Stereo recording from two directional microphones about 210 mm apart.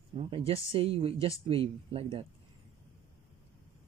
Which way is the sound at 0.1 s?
25° right (ahead or behind).